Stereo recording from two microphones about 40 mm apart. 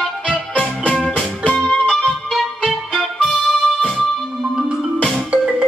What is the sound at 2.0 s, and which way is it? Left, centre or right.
Music, centre.